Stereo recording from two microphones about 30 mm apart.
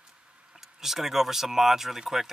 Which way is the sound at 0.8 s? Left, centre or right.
Centre.